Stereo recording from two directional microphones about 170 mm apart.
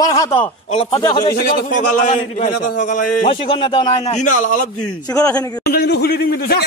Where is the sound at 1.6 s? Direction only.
50° left (ahead or behind).